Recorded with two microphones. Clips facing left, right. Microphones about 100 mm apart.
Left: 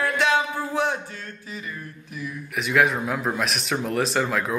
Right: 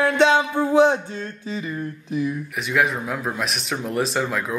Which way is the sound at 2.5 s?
Centre (ahead or behind).